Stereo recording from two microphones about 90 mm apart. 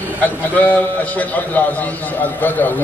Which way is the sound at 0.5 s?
20° left (ahead or behind).